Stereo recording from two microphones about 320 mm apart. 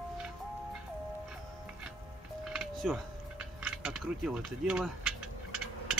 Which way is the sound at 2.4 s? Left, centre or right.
Centre.